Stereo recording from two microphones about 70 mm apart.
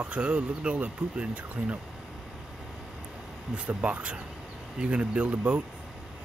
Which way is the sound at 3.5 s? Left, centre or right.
Centre.